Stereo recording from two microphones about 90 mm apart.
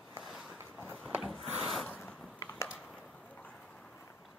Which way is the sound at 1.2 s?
Centre (ahead or behind).